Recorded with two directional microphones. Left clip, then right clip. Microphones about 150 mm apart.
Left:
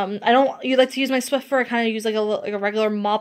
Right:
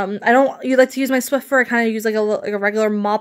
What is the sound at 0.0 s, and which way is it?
Speech, 45° right (ahead or behind).